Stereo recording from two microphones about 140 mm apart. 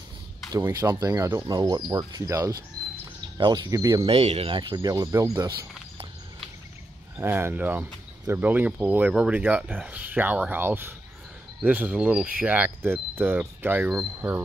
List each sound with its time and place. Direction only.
0.5 s speech: 25° right (ahead or behind)
3.3 s speech: 35° right (ahead or behind)
4.0 s speech: 45° right (ahead or behind)
4.6 s speech: 30° right (ahead or behind)
7.2 s speech: 15° right (ahead or behind)